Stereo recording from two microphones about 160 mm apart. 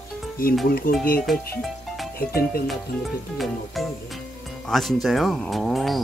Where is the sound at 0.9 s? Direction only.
60° left (ahead or behind).